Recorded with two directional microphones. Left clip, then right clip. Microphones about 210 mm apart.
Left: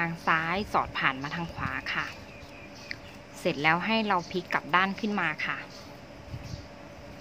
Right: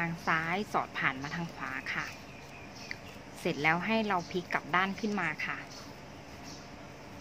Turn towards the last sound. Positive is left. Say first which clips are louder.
# left 4 dB
turn(degrees=20)  # may be behind; listen again after turning